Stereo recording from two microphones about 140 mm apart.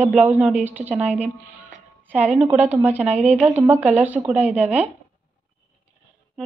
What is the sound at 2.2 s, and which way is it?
A woman's voice, 10° right (ahead or behind).